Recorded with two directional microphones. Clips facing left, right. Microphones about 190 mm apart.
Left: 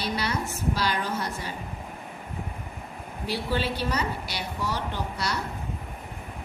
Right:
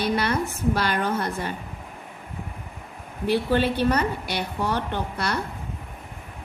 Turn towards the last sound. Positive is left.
turn(degrees=-55)  # may be behind; listen again after turning